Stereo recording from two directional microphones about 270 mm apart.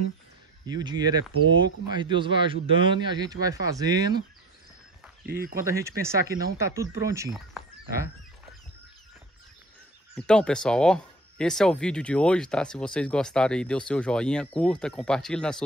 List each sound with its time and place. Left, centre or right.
0.7 s a man's voice: centre
5.2 s speech: right
5.6 s a man's voice: centre
10.1 s speech: centre